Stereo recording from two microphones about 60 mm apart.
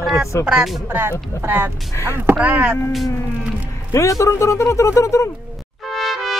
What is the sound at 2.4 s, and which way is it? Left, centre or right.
Speech, right.